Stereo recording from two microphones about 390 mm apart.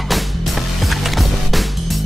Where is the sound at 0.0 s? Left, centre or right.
Centre.